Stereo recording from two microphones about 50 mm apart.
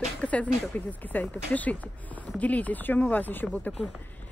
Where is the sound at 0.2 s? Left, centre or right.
Left.